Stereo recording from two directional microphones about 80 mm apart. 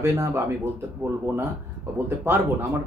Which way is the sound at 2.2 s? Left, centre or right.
Right.